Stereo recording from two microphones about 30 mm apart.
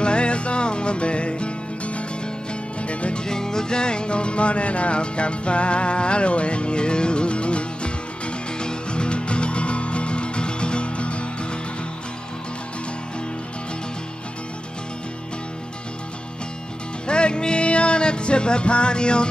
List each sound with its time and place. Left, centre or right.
0.0 s music: left
3.2 s music: left
17.1 s music: left